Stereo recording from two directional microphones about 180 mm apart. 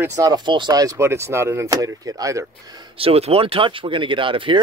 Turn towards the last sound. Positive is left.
turn(degrees=-30)  # may be behind; listen again after turning